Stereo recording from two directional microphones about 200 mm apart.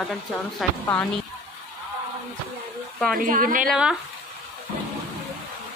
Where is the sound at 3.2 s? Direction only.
45° right (ahead or behind).